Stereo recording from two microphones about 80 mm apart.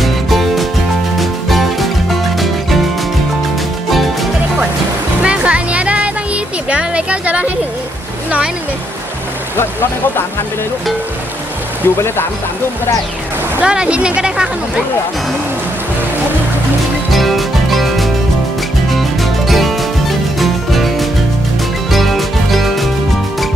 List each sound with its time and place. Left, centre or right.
0.0 s music: centre
3.9 s music: centre
5.2 s music: centre
9.6 s speech: left
11.8 s speech: left
13.6 s speech: centre
17.1 s music: centre